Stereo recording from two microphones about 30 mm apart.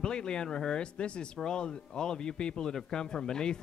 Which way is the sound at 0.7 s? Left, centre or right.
Left.